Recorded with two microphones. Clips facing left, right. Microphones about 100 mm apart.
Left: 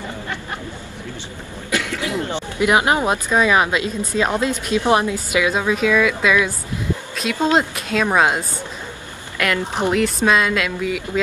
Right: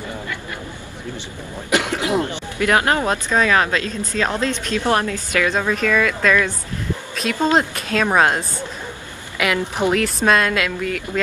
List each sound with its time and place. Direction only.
1.7 s cough: 20° right (ahead or behind)
2.2 s speech: 15° left (ahead or behind)
7.5 s speech: 5° left (ahead or behind)